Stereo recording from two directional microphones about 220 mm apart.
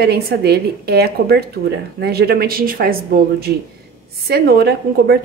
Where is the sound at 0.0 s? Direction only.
45° right (ahead or behind).